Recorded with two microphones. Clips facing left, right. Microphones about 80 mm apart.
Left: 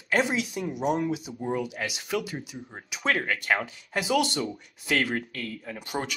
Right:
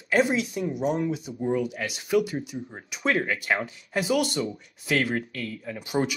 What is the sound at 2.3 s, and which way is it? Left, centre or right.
Speech, centre.